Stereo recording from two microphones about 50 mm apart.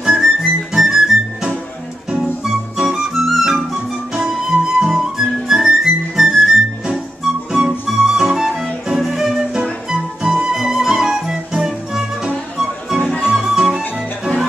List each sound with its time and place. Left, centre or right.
0.0 s music: centre
4.1 s flute: centre
5.5 s music: centre
9.8 s flute: centre
13.2 s music: centre